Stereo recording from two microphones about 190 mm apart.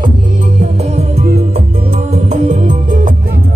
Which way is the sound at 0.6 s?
35° right (ahead or behind).